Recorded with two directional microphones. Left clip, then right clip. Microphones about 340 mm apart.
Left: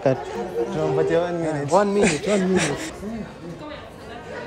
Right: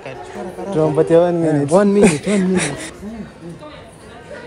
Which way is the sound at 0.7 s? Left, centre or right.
Centre.